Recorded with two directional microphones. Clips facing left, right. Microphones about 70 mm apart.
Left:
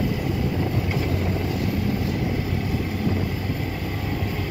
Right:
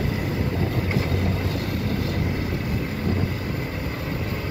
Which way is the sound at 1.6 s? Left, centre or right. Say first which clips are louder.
Left 2 dB; right.